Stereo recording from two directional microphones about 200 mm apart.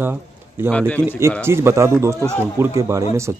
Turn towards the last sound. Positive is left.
turn(degrees=-15)  # may be behind; listen again after turning